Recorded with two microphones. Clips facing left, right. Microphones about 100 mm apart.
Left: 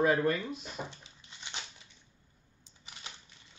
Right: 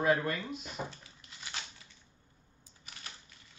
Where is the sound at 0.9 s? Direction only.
20° left (ahead or behind).